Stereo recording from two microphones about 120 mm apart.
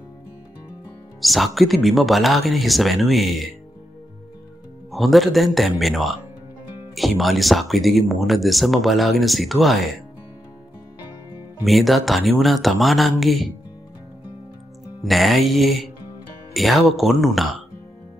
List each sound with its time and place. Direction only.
1.2 s speech: centre (ahead or behind)
4.9 s speech: centre (ahead or behind)
11.6 s speech: centre (ahead or behind)
15.0 s speech: centre (ahead or behind)